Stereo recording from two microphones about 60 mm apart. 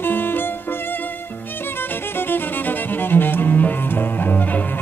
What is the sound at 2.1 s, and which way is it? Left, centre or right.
Music, left.